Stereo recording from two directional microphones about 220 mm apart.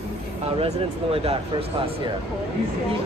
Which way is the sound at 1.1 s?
25° right (ahead or behind).